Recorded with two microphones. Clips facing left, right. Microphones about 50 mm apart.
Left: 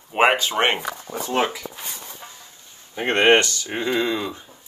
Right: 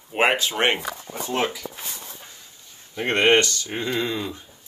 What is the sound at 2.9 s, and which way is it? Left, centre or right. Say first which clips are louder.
Speech: left 2 dB; centre.